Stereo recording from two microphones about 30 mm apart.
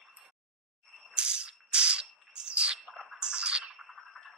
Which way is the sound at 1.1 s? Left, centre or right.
Right.